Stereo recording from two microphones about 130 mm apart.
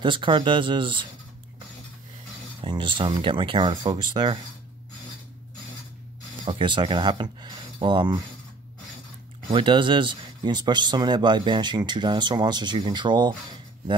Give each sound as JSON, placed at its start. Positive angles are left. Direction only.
{"t": 0.0, "sound": "speech", "side_deg": -40}
{"t": 2.6, "sound": "speech", "side_deg": -40}
{"t": 6.4, "sound": "speech", "side_deg": -40}
{"t": 9.5, "sound": "speech", "side_deg": -40}